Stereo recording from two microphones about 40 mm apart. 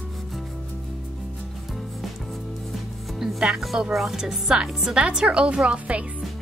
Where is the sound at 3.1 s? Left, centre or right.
Centre.